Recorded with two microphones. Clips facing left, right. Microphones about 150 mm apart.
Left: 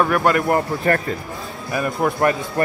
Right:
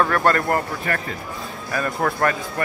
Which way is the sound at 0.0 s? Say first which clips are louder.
Left 2 dB; 10° left (ahead or behind).